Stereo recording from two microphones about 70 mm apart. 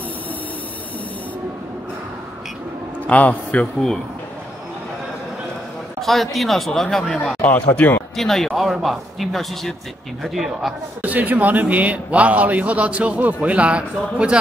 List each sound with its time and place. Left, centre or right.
3.1 s a man's voice: left
5.9 s a sound: centre
6.3 s speech: centre
7.4 s speech: centre
8.2 s speech: centre
11.0 s a man's voice: right